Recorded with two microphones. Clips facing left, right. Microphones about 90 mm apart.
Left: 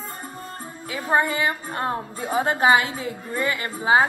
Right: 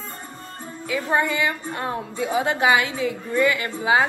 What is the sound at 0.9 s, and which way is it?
A woman's voice, 35° left (ahead or behind).